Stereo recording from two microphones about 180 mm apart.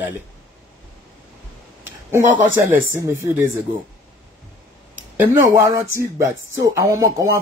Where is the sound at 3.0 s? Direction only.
15° right (ahead or behind).